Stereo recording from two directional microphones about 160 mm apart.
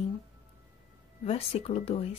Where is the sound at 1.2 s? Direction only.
40° left (ahead or behind).